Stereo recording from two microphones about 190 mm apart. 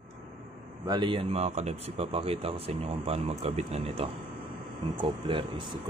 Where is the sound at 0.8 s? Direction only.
20° right (ahead or behind).